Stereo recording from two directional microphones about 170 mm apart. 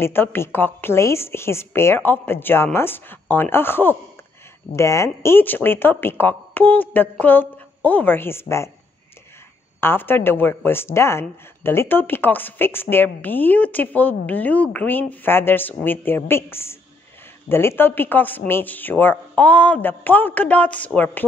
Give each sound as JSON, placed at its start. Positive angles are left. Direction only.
{"t": 0.0, "sound": "a woman's voice", "side_deg": 15}
{"t": 9.8, "sound": "a woman's voice", "side_deg": 15}